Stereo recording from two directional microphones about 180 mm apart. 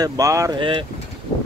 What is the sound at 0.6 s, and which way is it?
Speech, 30° right (ahead or behind).